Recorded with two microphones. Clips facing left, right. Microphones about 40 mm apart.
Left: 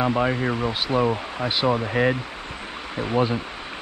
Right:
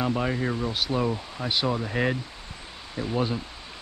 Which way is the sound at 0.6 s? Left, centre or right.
Left.